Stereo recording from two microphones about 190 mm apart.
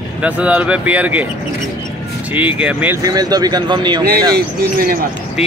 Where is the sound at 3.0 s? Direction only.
20° right (ahead or behind).